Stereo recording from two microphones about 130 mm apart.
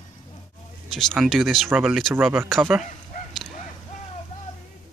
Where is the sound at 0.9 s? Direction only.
5° left (ahead or behind).